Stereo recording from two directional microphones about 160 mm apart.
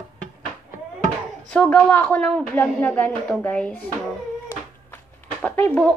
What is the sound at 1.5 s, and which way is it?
A woman's voice, 10° left (ahead or behind).